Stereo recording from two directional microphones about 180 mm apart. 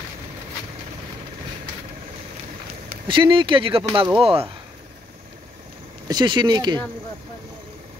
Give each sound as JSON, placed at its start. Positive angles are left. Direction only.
{"t": 3.1, "sound": "speech", "side_deg": -30}
{"t": 6.0, "sound": "speech", "side_deg": -25}